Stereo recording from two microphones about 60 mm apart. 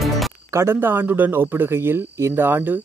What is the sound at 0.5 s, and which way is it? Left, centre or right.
Speech, right.